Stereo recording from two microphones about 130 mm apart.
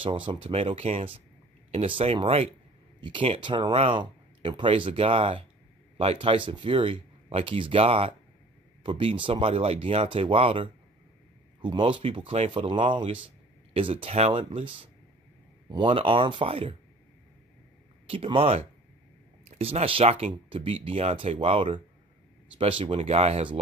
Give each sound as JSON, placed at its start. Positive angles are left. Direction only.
{"t": 0.0, "sound": "speech", "side_deg": -40}
{"t": 18.0, "sound": "speech", "side_deg": -45}